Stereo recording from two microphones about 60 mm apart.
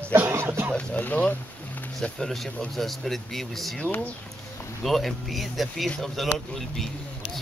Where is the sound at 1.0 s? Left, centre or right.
Left.